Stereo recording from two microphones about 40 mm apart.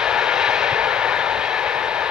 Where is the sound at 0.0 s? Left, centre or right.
Centre.